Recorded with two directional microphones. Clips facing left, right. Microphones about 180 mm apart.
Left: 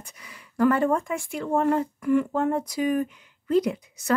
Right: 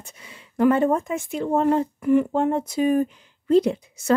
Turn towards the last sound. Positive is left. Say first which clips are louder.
# right 4 dB
turn(degrees=-25)  # may be behind; listen again after turning